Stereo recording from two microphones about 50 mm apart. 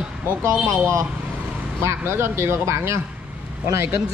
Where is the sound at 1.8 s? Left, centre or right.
Right.